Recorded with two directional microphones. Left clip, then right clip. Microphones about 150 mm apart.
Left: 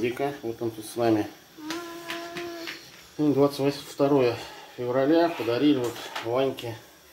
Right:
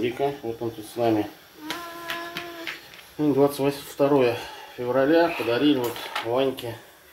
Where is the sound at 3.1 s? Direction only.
Centre (ahead or behind).